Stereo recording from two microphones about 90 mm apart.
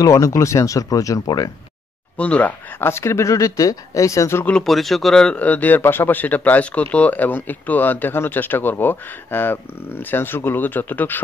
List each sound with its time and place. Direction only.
0.0 s speech: 40° left (ahead or behind)
2.1 s speech: 15° left (ahead or behind)
2.8 s speech: 30° left (ahead or behind)
4.6 s speech: centre (ahead or behind); by 11.1 s 20° left (ahead or behind)